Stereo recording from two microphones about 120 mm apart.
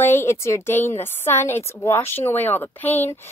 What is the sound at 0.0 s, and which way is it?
A woman's voice, 20° left (ahead or behind).